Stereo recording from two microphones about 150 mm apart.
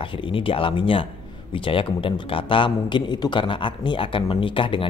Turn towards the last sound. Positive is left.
turn(degrees=35)  # may be behind; listen again after turning